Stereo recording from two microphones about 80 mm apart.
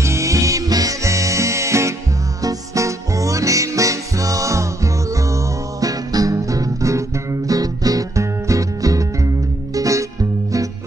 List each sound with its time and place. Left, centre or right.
0.0 s music: right